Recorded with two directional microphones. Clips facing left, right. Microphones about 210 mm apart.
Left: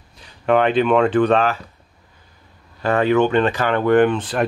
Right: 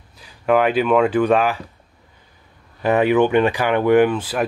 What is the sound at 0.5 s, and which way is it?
Speech, 5° right (ahead or behind).